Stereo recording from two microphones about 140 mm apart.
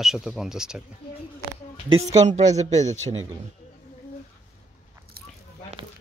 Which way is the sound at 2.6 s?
55° right (ahead or behind).